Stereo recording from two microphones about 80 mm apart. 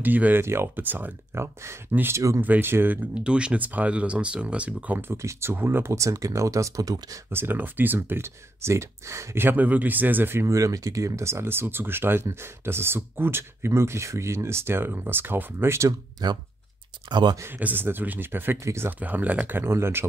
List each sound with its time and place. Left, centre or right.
0.0 s speech: right
2.1 s speech: right
2.4 s speech: right
3.2 s speech: centre
5.1 s speech: right
7.2 s speech: right
10.4 s speech: right
16.2 s speech: right
17.6 s speech: right